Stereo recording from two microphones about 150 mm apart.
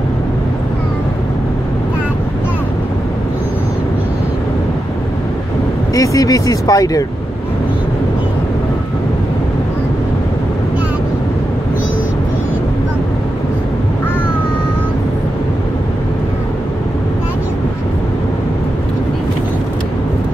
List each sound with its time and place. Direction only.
5.9 s speech: 25° left (ahead or behind)